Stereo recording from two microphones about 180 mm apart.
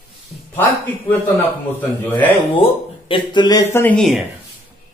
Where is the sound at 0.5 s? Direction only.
10° left (ahead or behind).